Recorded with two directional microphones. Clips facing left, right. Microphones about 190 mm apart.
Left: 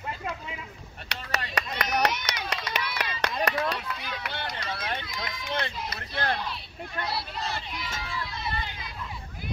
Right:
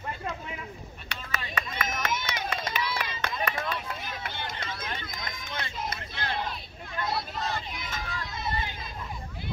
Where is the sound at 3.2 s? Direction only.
75° left (ahead or behind).